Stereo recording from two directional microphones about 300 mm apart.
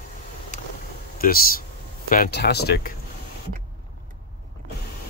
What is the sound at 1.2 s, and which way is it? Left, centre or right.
Speech, left.